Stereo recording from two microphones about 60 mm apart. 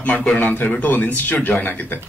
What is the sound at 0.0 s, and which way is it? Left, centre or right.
A man's voice, left.